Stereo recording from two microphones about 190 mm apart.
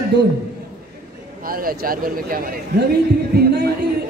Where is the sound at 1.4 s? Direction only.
50° right (ahead or behind).